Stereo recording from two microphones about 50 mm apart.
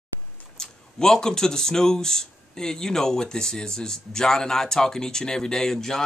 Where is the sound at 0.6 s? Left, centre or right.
Centre.